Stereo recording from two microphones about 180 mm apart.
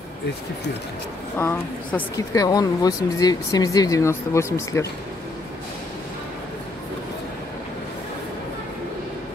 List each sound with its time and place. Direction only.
1.4 s speech: 10° left (ahead or behind)